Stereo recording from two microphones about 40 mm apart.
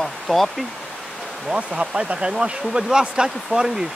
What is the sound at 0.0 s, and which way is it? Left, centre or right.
Speech, centre.